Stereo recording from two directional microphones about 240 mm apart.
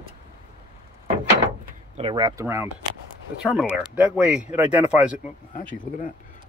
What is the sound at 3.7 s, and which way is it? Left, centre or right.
Speech, centre.